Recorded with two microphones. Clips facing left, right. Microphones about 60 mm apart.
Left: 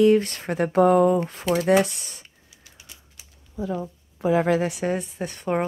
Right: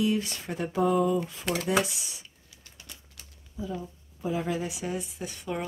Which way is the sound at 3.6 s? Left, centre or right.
Left.